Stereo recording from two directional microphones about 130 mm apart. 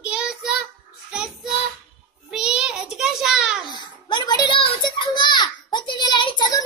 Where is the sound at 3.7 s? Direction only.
35° left (ahead or behind).